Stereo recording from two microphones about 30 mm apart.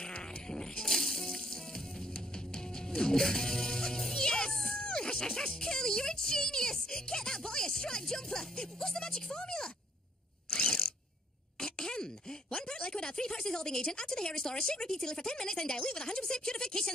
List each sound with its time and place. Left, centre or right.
0.0 s sheep: left
0.9 s music: centre
4.7 s a sound: left
5.6 s music: left
10.5 s a sound: left
13.8 s speech: left